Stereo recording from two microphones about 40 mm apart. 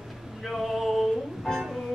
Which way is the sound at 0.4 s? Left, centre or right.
Centre.